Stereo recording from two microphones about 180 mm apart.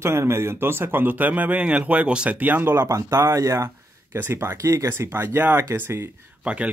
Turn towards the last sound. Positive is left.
turn(degrees=-10)  # may be behind; listen again after turning